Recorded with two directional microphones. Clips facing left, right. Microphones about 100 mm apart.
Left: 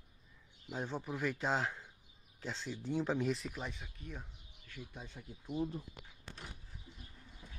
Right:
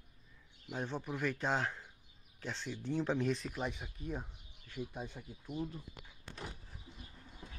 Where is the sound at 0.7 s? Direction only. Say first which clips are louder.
Even; 10° left (ahead or behind).